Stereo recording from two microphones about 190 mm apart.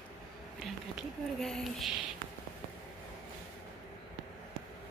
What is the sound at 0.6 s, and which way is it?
Speech, centre (ahead or behind).